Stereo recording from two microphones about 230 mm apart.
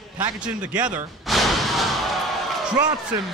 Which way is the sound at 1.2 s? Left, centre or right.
Centre.